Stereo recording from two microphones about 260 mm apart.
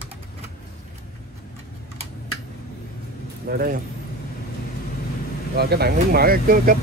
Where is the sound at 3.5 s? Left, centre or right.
Right.